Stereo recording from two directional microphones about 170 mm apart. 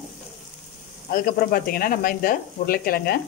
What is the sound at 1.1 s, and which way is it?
Speech, 60° left (ahead or behind).